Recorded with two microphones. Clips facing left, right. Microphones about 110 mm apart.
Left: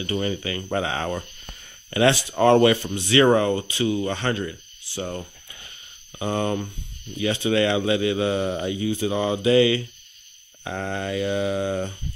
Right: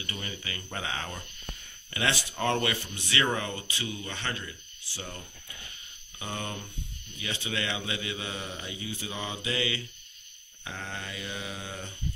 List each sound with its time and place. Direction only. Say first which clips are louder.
0.0 s speech: left 14 dB; 40° left (ahead or behind)
0.7 s speech: left 11 dB; 55° left (ahead or behind)
2.3 s speech: left 15 dB; 50° left (ahead or behind)
7.8 s speech: left 14 dB; 65° left (ahead or behind)